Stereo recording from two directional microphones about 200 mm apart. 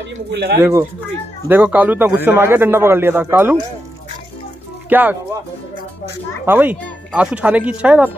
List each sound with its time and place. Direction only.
0.3 s speech: 55° right (ahead or behind)
0.6 s a man's voice: 15° right (ahead or behind)
4.8 s speech: 10° right (ahead or behind)
6.4 s a man's voice: 10° right (ahead or behind)